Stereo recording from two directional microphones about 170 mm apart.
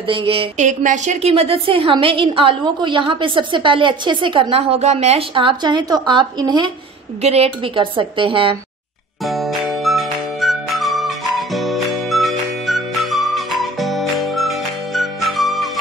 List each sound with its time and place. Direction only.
0.0 s a woman's voice: 30° right (ahead or behind)
0.6 s a woman's voice: 45° right (ahead or behind); by 6.7 s 25° right (ahead or behind)
7.2 s a woman's voice: 35° right (ahead or behind)
9.2 s music: centre (ahead or behind)